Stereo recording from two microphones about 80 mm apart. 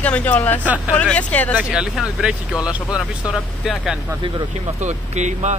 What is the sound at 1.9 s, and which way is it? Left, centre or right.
Speech, centre.